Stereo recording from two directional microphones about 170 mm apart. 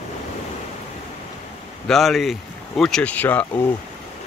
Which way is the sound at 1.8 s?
Centre (ahead or behind).